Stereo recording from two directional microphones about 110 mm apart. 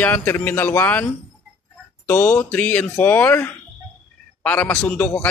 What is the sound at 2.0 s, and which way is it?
A man's voice, 15° left (ahead or behind).